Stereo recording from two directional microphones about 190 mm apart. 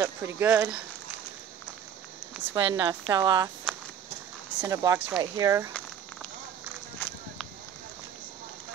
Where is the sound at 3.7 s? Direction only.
Centre (ahead or behind).